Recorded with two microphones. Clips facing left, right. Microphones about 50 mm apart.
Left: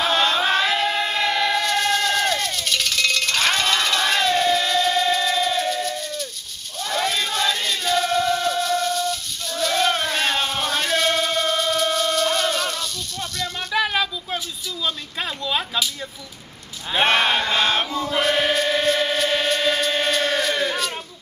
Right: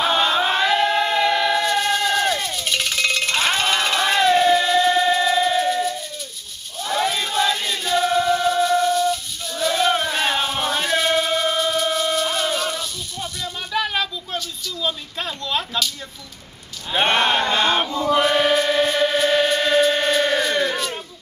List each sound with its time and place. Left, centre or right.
0.0 s chant: centre
13.7 s a sound: centre
16.9 s chant: centre